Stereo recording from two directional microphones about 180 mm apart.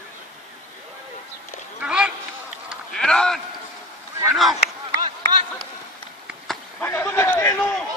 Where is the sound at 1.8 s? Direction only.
5° right (ahead or behind).